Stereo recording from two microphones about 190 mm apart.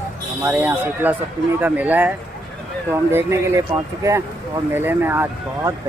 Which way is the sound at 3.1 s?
15° right (ahead or behind).